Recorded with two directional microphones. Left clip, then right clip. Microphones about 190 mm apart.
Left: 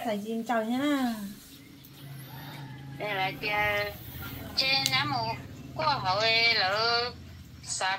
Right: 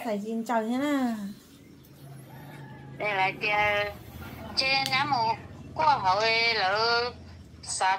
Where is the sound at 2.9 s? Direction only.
20° right (ahead or behind).